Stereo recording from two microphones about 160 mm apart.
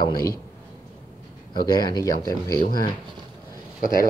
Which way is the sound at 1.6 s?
25° left (ahead or behind).